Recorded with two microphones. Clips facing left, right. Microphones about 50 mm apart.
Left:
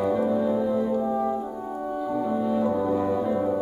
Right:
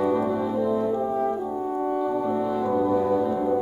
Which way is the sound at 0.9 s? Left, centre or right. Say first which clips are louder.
Even; centre.